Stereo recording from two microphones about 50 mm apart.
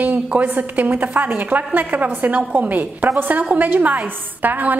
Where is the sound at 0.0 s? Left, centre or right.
Right.